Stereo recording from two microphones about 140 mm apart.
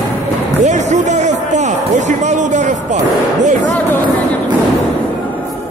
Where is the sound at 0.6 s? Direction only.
55° right (ahead or behind).